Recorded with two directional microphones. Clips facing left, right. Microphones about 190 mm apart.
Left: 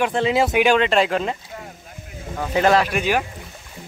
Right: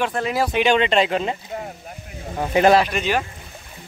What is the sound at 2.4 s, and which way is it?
Speech, 15° right (ahead or behind).